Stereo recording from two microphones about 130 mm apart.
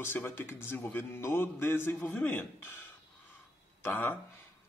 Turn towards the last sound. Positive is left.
turn(degrees=15)  # may be behind; listen again after turning